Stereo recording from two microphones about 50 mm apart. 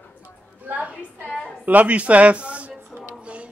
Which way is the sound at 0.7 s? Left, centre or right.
Right.